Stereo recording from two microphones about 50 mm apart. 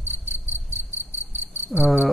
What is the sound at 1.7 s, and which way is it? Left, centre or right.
Cricket, centre.